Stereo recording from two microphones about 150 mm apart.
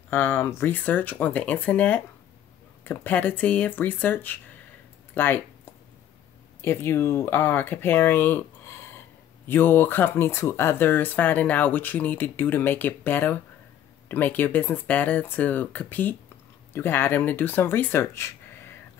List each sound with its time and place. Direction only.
0.1 s speech: 15° left (ahead or behind)
5.1 s a sound: 15° left (ahead or behind)
6.6 s speech: 15° left (ahead or behind)